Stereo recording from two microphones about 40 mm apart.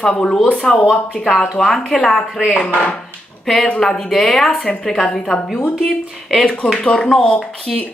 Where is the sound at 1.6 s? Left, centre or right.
Centre.